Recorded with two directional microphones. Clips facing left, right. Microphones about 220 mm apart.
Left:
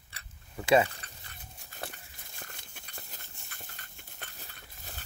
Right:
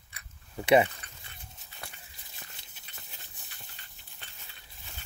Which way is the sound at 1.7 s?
45° left (ahead or behind).